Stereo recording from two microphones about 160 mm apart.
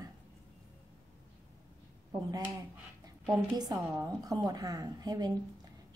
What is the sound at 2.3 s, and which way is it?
A woman's voice, 20° right (ahead or behind).